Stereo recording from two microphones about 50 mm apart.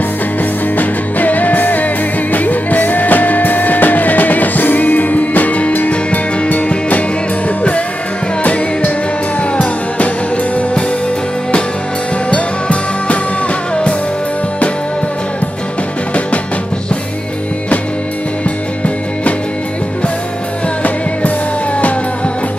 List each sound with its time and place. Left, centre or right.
0.7 s music: left
9.4 s music: left
12.3 s music: left